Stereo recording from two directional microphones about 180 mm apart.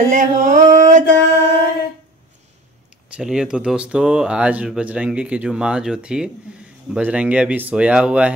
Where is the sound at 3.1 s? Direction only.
5° right (ahead or behind).